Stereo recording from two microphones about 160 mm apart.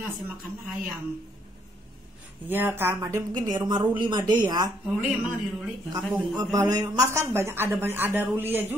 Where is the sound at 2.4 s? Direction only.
10° right (ahead or behind).